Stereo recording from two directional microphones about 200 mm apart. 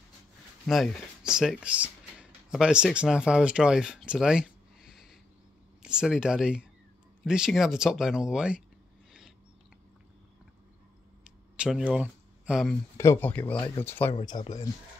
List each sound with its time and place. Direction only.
0.7 s speech: centre (ahead or behind)
11.5 s speech: 5° right (ahead or behind)
12.9 s speech: 15° left (ahead or behind)
14.1 s speech: 25° left (ahead or behind)